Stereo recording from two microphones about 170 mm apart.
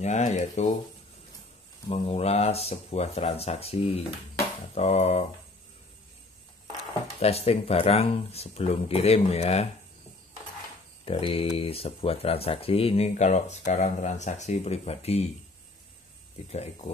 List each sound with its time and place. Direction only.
0.0 s speech: 40° left (ahead or behind)
1.9 s speech: 35° left (ahead or behind)
7.2 s speech: 35° left (ahead or behind)
11.1 s speech: 35° left (ahead or behind)
16.4 s speech: 40° left (ahead or behind)